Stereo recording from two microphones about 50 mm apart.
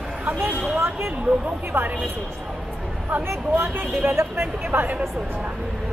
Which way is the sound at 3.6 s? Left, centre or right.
Right.